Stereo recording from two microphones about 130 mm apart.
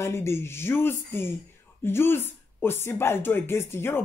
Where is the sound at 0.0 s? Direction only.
20° left (ahead or behind).